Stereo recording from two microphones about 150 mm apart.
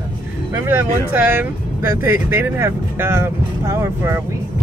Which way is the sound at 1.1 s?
15° right (ahead or behind).